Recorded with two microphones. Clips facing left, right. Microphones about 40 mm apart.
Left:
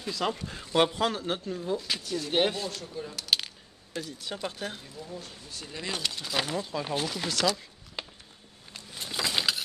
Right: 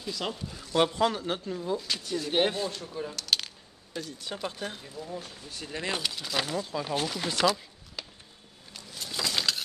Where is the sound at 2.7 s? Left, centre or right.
Centre.